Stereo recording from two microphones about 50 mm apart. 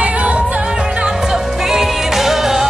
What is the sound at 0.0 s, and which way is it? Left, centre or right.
Music, right.